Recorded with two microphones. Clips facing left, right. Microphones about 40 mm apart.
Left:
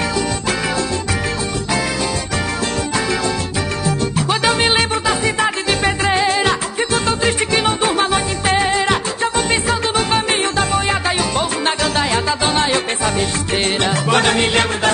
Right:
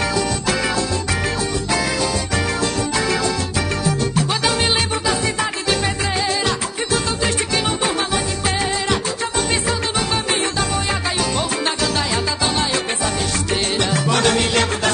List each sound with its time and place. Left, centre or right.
4.3 s music: left